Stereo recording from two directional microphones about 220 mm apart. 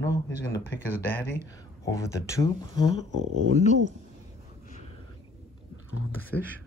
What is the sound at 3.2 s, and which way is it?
Speech, 90° right.